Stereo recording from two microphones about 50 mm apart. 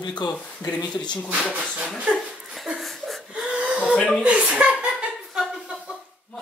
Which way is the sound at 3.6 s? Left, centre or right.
Right.